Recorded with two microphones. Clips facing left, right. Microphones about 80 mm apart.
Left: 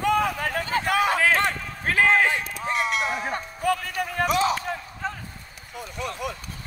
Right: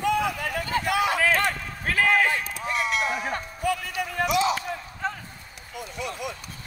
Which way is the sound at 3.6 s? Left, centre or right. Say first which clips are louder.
Left 3 dB; left.